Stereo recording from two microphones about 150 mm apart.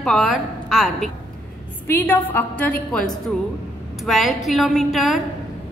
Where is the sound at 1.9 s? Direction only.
15° left (ahead or behind).